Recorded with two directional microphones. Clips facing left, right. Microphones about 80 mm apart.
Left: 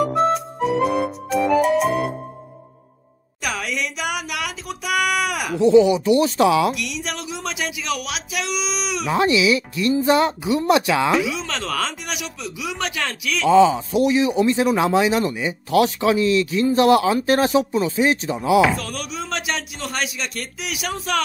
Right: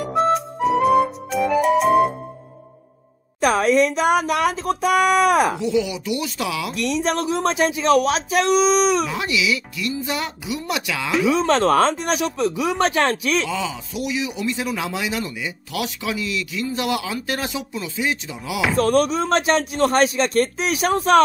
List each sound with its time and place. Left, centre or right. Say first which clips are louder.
0.0 s music: even; centre
3.3 s speech: right 10 dB; right
5.6 s a man's voice: left 8 dB; left
6.7 s speech: right 6 dB; right
9.0 s a man's voice: left 5 dB; left
11.2 s speech: right 9 dB; right
13.5 s a man's voice: left 12 dB; left
18.8 s speech: right 12 dB; right